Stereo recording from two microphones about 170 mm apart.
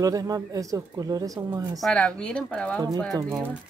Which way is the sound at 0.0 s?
20° right (ahead or behind).